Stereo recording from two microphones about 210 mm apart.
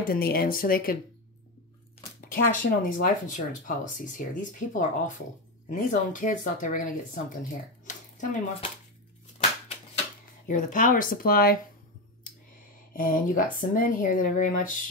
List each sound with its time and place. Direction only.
0.0 s speech: 45° left (ahead or behind)
2.3 s speech: 40° left (ahead or behind)
7.8 s a sound: 35° left (ahead or behind)
10.5 s speech: 40° left (ahead or behind)
12.9 s speech: 40° left (ahead or behind)